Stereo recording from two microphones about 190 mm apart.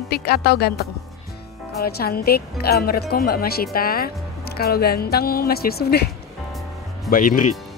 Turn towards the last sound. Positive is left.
turn(degrees=45)  # may be behind; listen again after turning